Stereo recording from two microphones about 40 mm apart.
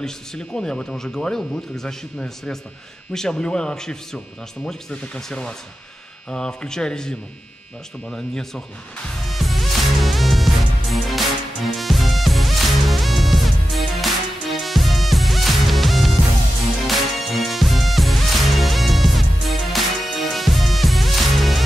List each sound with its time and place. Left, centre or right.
0.0 s speech: centre
4.9 s speech: left; by 8.6 s centre
9.2 s music: centre